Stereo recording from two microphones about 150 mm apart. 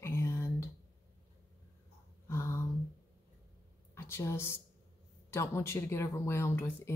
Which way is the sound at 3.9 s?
15° left (ahead or behind).